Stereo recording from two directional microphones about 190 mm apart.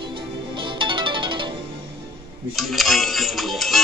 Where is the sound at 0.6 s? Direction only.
25° right (ahead or behind).